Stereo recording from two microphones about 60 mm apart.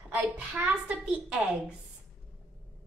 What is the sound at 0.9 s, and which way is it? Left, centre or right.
Speech, right.